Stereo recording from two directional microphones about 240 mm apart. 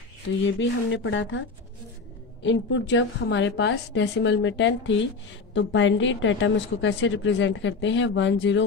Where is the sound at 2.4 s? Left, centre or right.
Left.